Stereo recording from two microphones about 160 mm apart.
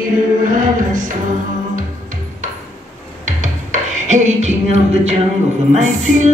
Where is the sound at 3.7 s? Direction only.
45° right (ahead or behind).